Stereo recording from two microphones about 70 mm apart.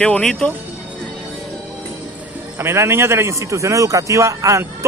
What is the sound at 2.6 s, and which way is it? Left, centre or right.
A man's voice, right.